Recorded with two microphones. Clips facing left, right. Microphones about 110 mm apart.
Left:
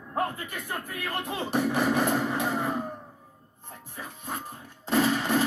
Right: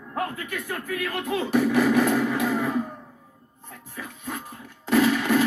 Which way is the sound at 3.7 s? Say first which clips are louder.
Right 2 dB; 30° left (ahead or behind).